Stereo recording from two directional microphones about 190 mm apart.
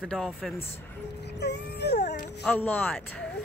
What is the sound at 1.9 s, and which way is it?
Music, 40° left (ahead or behind).